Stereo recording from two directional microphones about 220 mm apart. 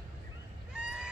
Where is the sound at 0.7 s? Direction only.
5° right (ahead or behind).